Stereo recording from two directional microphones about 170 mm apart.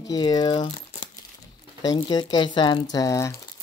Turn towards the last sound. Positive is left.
turn(degrees=15)  # may be behind; listen again after turning